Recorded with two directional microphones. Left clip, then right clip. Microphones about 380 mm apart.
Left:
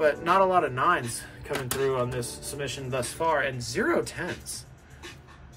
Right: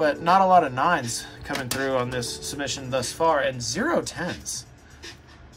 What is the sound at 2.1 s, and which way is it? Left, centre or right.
Speech, centre.